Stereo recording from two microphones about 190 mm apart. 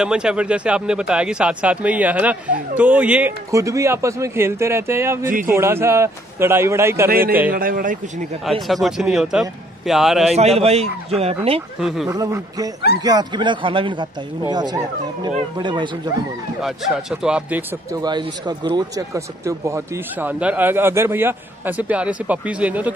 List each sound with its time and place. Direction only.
0.0 s speech: 5° right (ahead or behind)
7.1 s a man's voice: 50° right (ahead or behind)
8.5 s speech: centre (ahead or behind)
10.3 s speech: 35° right (ahead or behind)
12.1 s speech: 20° right (ahead or behind)
16.6 s speech: centre (ahead or behind)
18.0 s speech: 20° right (ahead or behind)